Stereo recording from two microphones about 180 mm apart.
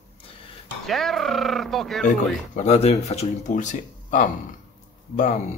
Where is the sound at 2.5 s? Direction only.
35° left (ahead or behind).